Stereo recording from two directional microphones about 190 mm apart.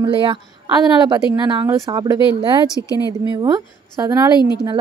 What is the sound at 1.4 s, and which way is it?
Speech, 20° right (ahead or behind).